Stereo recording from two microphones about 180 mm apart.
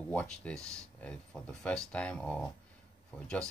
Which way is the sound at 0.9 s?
5° left (ahead or behind).